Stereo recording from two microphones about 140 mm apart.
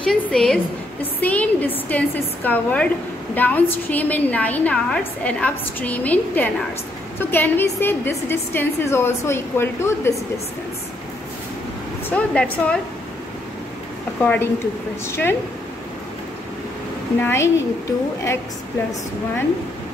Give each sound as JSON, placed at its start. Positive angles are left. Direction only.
{"t": 0.0, "sound": "a woman's voice", "side_deg": 5}
{"t": 12.1, "sound": "a woman's voice", "side_deg": 10}
{"t": 14.2, "sound": "a woman's voice", "side_deg": 10}
{"t": 17.2, "sound": "a woman's voice", "side_deg": 20}